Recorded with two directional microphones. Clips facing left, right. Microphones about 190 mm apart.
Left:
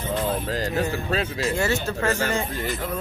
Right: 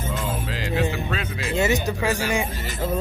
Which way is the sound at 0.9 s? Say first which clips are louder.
Left 3 dB; 35° left (ahead or behind).